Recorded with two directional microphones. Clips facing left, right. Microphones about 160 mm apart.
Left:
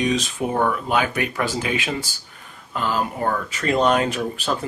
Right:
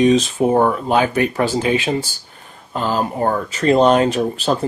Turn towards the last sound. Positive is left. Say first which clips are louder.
# right 6 dB
turn(degrees=-35)  # may be behind; listen again after turning